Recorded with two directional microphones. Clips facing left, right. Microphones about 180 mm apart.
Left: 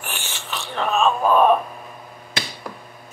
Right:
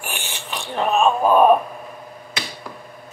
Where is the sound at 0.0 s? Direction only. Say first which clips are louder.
Right 2 dB; 15° right (ahead or behind).